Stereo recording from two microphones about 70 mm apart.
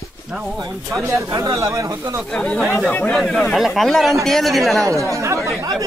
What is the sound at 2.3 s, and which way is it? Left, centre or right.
A man's voice, centre.